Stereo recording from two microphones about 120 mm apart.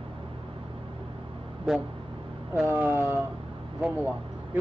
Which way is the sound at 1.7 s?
5° right (ahead or behind).